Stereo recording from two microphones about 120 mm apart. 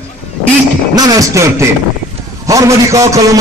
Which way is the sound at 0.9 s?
30° right (ahead or behind).